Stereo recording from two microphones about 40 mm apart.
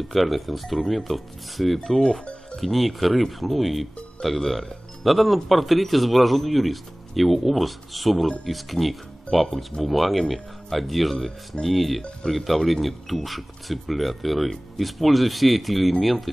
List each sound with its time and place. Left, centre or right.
0.1 s speech: centre